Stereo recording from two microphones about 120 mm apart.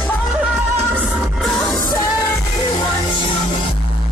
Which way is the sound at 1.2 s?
Centre (ahead or behind).